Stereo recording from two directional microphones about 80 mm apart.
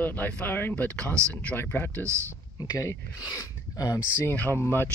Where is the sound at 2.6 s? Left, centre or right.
Left.